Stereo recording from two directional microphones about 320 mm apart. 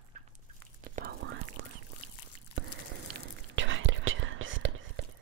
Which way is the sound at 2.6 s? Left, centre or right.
Right.